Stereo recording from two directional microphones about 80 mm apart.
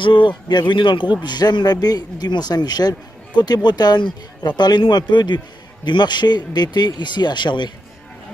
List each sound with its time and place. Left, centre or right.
0.0 s speech: left